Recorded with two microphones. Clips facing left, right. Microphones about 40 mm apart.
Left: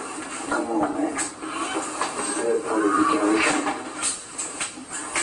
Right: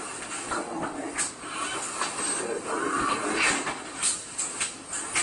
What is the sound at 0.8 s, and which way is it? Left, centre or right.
Dog, left.